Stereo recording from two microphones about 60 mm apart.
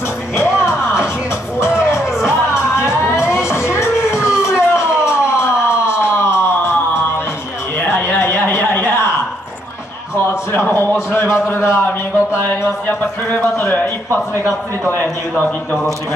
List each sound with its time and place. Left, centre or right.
0.4 s music: left
2.2 s music: left
4.4 s siren: left
7.8 s a sound: left
10.2 s a sound: left
12.4 s a man's voice: left